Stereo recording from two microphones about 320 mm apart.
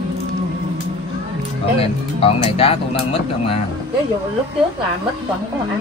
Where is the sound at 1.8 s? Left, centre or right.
Centre.